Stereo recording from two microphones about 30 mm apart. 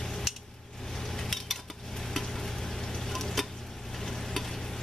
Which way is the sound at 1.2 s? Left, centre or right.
Centre.